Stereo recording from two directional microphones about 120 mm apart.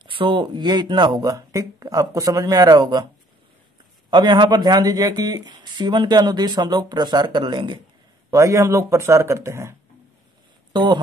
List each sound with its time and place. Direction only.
0.0 s speech: 40° right (ahead or behind)
4.1 s speech: 40° right (ahead or behind)
8.3 s speech: 25° right (ahead or behind)
10.7 s speech: 40° right (ahead or behind)